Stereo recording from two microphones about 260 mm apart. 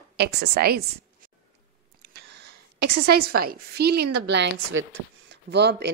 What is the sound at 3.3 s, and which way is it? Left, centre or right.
A woman's voice, right.